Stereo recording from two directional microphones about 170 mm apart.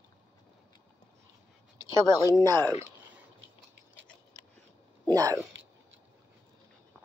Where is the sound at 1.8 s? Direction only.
20° right (ahead or behind).